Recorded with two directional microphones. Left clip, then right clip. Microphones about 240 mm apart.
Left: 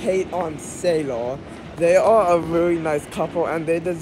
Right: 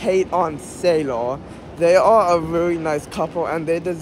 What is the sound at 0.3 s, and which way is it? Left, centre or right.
A man's voice, right.